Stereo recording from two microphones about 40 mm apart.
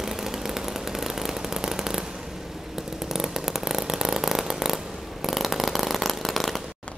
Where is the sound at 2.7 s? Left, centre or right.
Centre.